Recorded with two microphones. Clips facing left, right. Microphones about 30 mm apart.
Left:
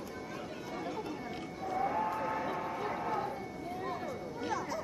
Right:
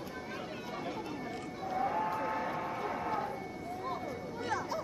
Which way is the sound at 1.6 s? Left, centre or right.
Centre.